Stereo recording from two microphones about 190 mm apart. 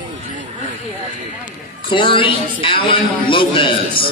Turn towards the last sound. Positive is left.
turn(degrees=25)  # may be behind; listen again after turning